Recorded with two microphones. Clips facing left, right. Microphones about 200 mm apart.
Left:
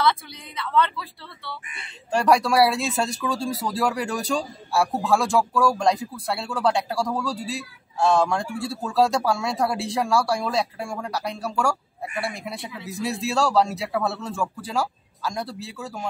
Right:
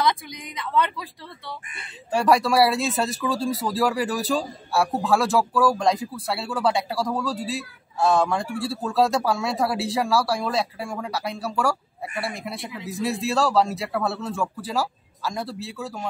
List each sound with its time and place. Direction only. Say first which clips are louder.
0.0 s a woman's voice: left 1 dB; 15° right (ahead or behind)
1.8 s speech: even; centre (ahead or behind)